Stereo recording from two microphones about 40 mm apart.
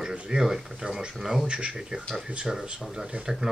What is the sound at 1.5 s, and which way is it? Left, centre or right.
Speech, right.